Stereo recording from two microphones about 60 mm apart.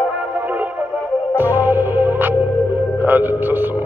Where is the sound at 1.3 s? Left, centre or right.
Right.